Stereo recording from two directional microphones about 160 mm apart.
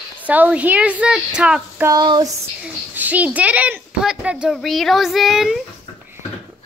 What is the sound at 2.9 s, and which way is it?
Speech, 10° right (ahead or behind).